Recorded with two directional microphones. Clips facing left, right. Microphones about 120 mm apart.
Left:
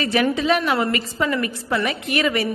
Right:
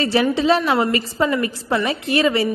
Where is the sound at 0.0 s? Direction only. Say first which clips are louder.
Right 2 dB; 30° right (ahead or behind).